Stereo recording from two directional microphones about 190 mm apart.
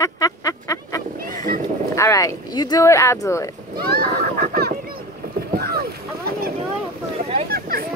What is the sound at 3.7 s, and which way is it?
Speech, 50° right (ahead or behind).